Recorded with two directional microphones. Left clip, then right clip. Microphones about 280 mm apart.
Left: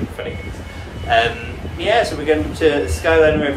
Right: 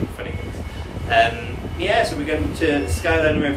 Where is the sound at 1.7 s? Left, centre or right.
Centre.